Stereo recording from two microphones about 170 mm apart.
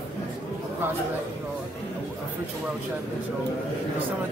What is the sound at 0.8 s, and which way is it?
Speech, 15° right (ahead or behind).